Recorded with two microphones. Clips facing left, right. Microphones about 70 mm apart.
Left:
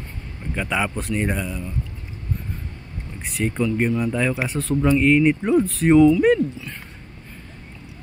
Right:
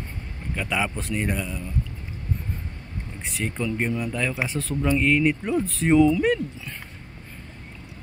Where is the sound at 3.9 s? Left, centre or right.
Centre.